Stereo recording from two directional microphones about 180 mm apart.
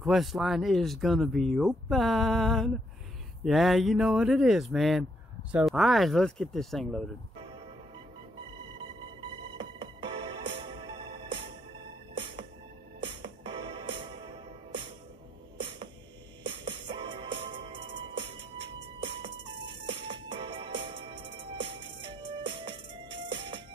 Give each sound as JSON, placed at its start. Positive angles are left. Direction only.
{"t": 0.0, "sound": "speech", "side_deg": 0}
{"t": 7.3, "sound": "music", "side_deg": -25}
{"t": 9.6, "sound": "music", "side_deg": -25}
{"t": 16.4, "sound": "music", "side_deg": -25}